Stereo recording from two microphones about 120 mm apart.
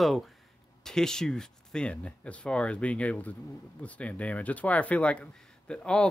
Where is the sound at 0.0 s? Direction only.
Centre (ahead or behind).